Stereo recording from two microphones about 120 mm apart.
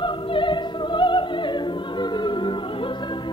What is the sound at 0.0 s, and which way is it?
Opera, 40° left (ahead or behind).